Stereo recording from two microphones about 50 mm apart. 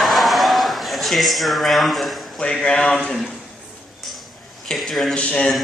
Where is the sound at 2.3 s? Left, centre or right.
Centre.